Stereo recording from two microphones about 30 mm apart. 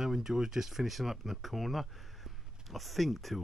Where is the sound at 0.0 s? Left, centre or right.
Centre.